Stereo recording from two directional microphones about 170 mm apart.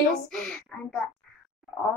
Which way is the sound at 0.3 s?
5° left (ahead or behind).